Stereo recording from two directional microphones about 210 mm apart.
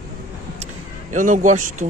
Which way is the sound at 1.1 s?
40° right (ahead or behind).